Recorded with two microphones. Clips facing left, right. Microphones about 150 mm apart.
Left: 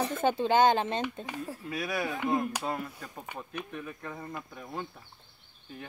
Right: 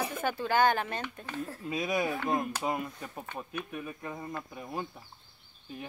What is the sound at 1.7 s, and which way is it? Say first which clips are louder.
Speech: right 3 dB; 20° right (ahead or behind).